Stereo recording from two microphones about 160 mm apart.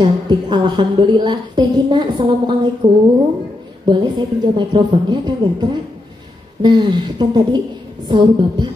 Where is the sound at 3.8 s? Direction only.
30° right (ahead or behind).